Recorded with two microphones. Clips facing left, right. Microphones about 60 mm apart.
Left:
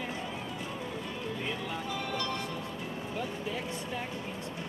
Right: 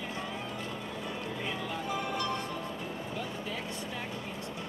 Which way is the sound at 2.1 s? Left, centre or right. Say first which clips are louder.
Even; right.